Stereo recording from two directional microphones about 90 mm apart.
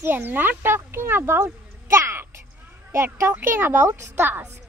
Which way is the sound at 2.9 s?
25° right (ahead or behind).